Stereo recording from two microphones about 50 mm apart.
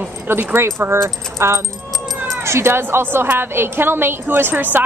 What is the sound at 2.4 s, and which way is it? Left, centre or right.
A woman's voice, right.